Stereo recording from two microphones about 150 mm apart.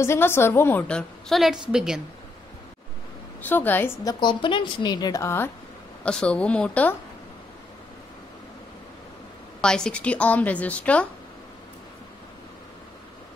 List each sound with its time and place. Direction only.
0.0 s a woman's voice: 15° left (ahead or behind); by 2.0 s 5° right (ahead or behind)
3.4 s a woman's voice: 15° left (ahead or behind)
4.0 s a woman's voice: 30° left (ahead or behind)
6.0 s a woman's voice: 5° left (ahead or behind)
9.6 s a woman's voice: 5° left (ahead or behind)